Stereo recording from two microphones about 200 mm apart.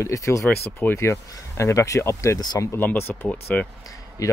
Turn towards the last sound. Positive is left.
turn(degrees=15)  # may be behind; listen again after turning